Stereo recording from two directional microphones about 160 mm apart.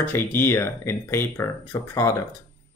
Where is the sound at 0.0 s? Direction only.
15° left (ahead or behind).